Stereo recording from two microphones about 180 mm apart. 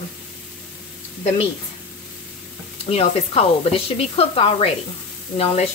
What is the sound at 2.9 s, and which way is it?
Speech, 35° left (ahead or behind).